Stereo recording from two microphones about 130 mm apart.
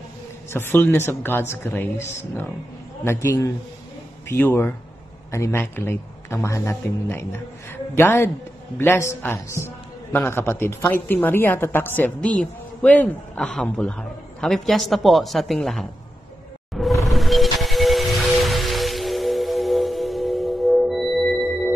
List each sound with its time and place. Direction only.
0.5 s a woman's voice: 15° left (ahead or behind)
16.7 s music: centre (ahead or behind)